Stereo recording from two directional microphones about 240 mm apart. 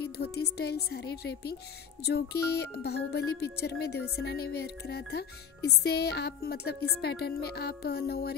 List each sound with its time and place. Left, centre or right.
0.0 s speech: left